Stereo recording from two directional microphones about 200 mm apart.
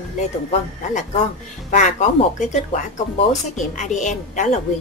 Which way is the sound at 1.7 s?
35° left (ahead or behind).